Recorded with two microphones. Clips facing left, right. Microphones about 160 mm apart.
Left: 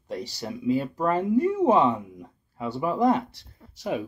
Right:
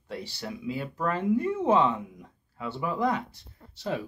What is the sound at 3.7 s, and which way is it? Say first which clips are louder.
Speech: left 3 dB; 15° left (ahead or behind).